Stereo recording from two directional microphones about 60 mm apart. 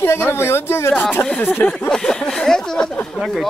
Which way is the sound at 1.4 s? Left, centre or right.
Left.